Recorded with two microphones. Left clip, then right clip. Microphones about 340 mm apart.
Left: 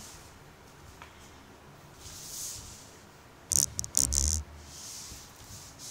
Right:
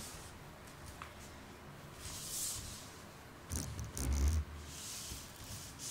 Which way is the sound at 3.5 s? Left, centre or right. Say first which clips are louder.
Left 17 dB; left.